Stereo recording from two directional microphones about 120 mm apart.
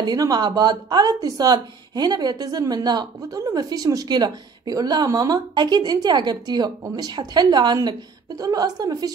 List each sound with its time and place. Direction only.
0.0 s speech: 35° right (ahead or behind)